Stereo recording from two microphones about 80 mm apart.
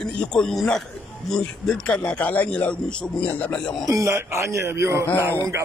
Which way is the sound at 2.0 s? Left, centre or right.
Centre.